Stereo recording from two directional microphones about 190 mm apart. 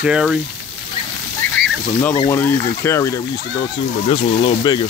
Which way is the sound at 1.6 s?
55° right (ahead or behind).